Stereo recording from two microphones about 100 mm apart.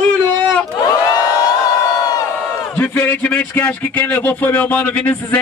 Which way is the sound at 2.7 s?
20° left (ahead or behind).